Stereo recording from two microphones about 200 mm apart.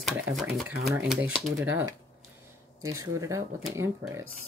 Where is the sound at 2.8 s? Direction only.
15° right (ahead or behind).